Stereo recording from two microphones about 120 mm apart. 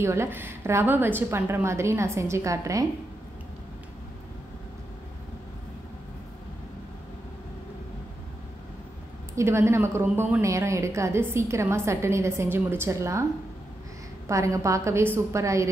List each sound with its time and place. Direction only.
0.0 s a woman's voice: 20° right (ahead or behind)
9.3 s a woman's voice: 20° right (ahead or behind)
14.2 s a woman's voice: 25° right (ahead or behind)